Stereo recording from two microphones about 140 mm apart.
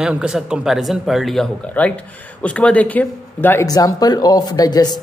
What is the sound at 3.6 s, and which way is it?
Speech, 25° left (ahead or behind).